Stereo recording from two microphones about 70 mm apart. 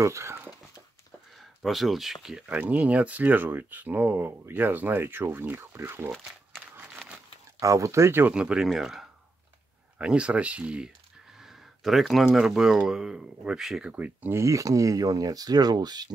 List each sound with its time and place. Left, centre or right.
0.0 s speech: right
1.4 s speech: centre
2.5 s speech: right
7.6 s speech: right
8.3 s speech: centre
8.6 s speech: centre
9.9 s speech: centre
11.3 s a sound: centre
12.3 s speech: centre
14.3 s speech: right